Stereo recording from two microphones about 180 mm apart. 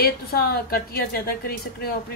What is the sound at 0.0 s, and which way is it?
A woman's voice, 55° left (ahead or behind).